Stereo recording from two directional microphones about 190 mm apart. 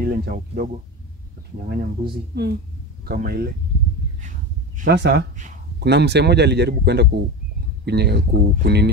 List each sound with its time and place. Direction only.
0.0 s speech: 50° right (ahead or behind)
1.7 s speech: 55° right (ahead or behind)
4.8 s speech: 65° right (ahead or behind)